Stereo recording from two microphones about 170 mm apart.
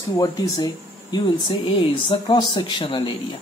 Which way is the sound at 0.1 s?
20° left (ahead or behind).